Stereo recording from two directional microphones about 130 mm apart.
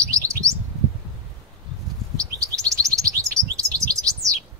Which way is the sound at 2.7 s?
25° right (ahead or behind).